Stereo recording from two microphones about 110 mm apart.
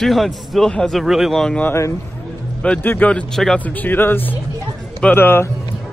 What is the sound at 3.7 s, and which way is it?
A man's voice, 20° left (ahead or behind).